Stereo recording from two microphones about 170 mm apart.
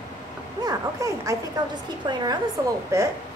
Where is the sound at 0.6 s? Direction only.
20° right (ahead or behind).